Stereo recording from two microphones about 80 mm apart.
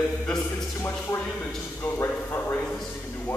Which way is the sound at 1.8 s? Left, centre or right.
Left.